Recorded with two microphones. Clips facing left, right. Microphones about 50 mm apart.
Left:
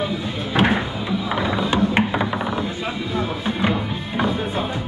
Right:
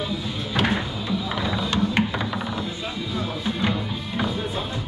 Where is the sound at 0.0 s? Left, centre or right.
Left.